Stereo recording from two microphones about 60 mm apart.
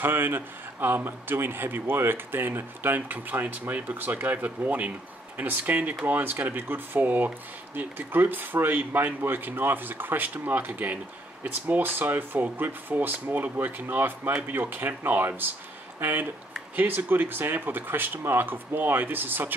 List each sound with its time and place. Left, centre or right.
0.0 s a man's voice: right